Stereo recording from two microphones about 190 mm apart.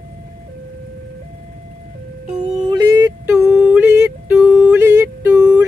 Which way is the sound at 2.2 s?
35° right (ahead or behind).